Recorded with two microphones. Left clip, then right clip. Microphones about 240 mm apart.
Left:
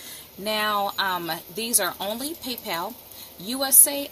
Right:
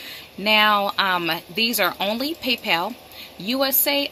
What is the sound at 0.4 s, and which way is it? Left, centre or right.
Speech, centre.